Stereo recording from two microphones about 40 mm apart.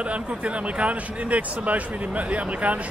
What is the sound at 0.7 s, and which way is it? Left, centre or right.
Speech, right.